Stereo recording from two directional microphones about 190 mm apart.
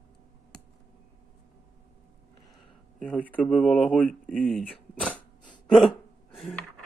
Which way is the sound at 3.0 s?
10° left (ahead or behind).